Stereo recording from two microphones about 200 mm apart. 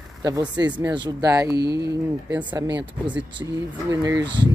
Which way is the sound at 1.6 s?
55° right (ahead or behind).